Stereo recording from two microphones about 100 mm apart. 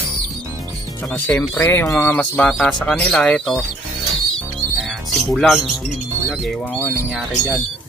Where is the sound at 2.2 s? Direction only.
10° left (ahead or behind).